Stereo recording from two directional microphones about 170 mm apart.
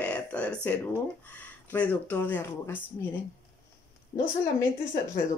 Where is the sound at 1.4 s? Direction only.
10° left (ahead or behind).